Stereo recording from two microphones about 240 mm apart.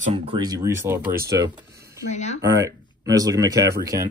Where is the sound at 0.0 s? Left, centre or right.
Right.